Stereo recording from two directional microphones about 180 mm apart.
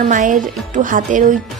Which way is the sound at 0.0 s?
45° right (ahead or behind).